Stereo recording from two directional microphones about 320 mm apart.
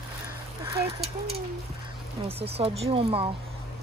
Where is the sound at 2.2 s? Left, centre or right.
Centre.